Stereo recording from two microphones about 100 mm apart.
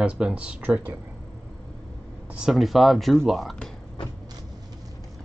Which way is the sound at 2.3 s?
5° right (ahead or behind).